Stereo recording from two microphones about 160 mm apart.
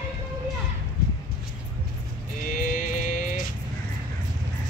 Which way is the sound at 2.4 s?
55° left (ahead or behind).